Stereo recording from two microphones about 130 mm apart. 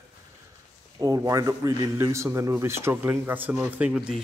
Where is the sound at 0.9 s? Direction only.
25° right (ahead or behind).